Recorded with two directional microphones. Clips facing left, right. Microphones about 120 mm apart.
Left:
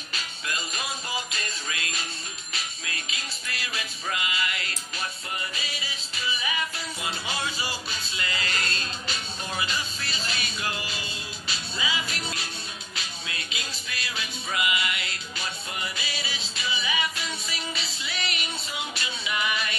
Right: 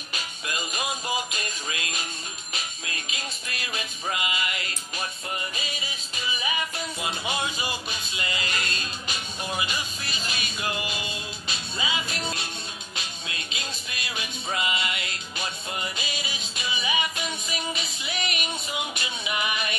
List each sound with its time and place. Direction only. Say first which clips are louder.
0.1 s music: right 1 dB; 15° right (ahead or behind)
6.1 s music: right 1 dB; 15° right (ahead or behind)
13.6 s music: even; 20° right (ahead or behind)
14.5 s music: even; 30° right (ahead or behind)